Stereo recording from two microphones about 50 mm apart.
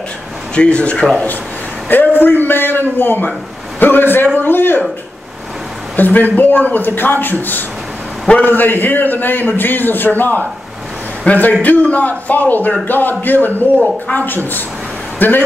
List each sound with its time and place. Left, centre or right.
0.6 s speech: left
1.9 s a sound: left
2.4 s a man's voice: left
5.9 s a man's voice: left